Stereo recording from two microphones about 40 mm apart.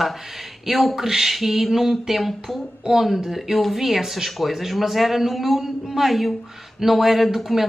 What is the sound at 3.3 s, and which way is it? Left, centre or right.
Speech, centre.